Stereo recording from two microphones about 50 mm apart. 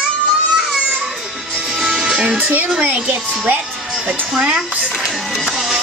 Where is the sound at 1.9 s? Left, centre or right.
Centre.